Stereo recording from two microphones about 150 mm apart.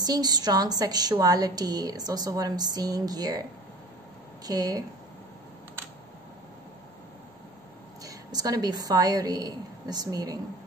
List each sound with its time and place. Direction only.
0.0 s a woman's voice: 25° right (ahead or behind)
4.5 s a woman's voice: 25° right (ahead or behind)
8.0 s a woman's voice: 25° right (ahead or behind)